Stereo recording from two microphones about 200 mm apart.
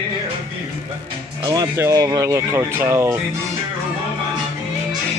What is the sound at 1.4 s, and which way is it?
Speech, 20° right (ahead or behind).